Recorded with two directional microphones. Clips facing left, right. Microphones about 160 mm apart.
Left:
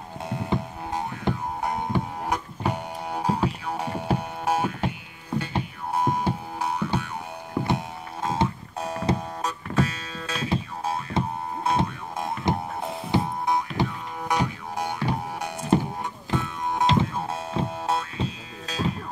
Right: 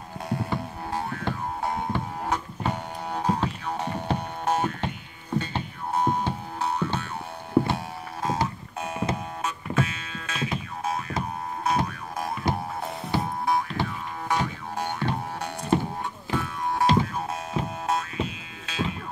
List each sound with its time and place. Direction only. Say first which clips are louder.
0.3 s music: left 1 dB; 20° left (ahead or behind)
7.6 s music: left 2 dB; 20° left (ahead or behind); by 18.9 s 40° left (ahead or behind)